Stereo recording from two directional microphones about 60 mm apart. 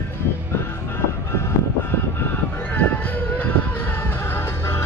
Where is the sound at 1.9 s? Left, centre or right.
Left.